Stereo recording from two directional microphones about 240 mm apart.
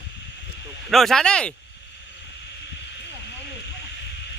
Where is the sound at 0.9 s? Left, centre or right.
Centre.